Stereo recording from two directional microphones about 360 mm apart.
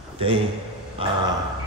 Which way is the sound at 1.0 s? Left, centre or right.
Centre.